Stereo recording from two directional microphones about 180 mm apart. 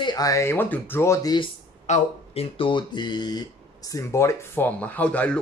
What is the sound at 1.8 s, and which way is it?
Speech, 35° left (ahead or behind).